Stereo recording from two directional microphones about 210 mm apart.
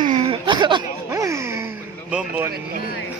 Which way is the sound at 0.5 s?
20° right (ahead or behind).